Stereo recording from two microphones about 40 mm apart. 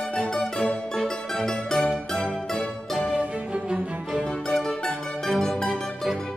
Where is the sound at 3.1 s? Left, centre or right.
Right.